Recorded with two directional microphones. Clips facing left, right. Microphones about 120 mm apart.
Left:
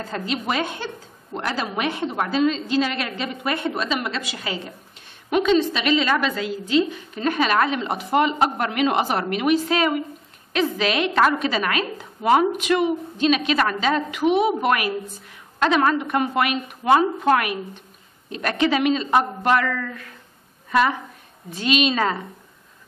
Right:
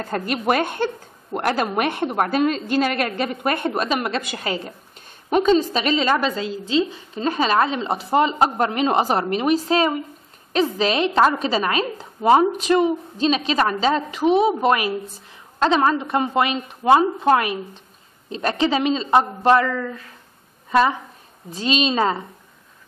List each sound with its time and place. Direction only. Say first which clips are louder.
0.1 s a woman's voice: right 5 dB; 55° right (ahead or behind); by 20.1 s 25° right (ahead or behind)
21.5 s a woman's voice: even; 30° right (ahead or behind)